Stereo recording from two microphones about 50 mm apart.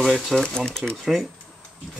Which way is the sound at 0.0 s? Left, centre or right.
Centre.